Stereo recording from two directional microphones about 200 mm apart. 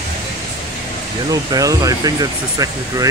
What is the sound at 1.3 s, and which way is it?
Speech, 15° right (ahead or behind).